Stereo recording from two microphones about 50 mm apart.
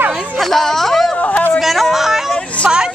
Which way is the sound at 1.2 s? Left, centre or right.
Left.